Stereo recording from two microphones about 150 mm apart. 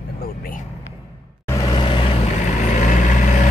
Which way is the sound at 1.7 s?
35° left (ahead or behind).